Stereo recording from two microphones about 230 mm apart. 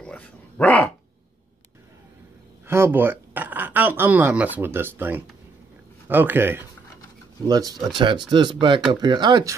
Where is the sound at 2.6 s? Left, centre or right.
Centre.